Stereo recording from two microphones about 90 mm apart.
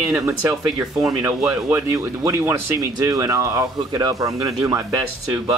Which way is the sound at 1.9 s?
30° right (ahead or behind).